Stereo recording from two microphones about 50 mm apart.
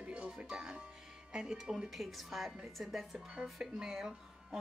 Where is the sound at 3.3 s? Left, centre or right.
Centre.